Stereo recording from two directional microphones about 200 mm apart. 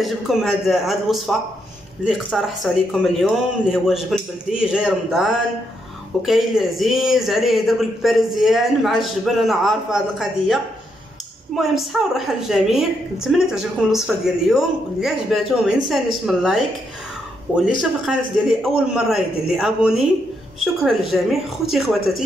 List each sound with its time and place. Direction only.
0.0 s a woman's voice: centre (ahead or behind)